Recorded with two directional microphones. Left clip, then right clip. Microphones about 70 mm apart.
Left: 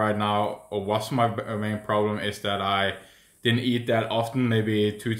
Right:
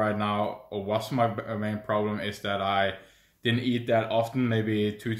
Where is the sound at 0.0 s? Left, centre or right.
Left.